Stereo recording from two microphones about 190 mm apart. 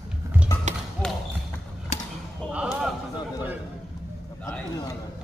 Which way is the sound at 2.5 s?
5° right (ahead or behind).